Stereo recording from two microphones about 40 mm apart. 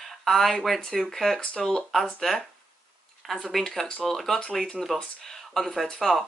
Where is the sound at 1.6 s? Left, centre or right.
Centre.